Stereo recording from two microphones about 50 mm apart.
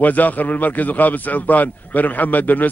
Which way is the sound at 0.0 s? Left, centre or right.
Left.